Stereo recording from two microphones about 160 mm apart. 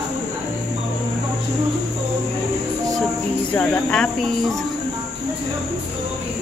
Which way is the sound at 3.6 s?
5° left (ahead or behind).